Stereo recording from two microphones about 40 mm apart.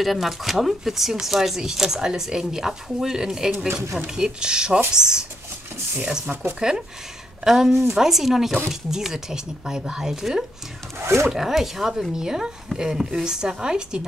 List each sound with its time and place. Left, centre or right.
0.0 s speech: centre
6.6 s speech: centre